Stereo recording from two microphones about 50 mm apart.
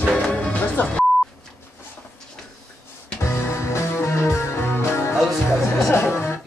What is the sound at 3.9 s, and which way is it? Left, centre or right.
Music, left.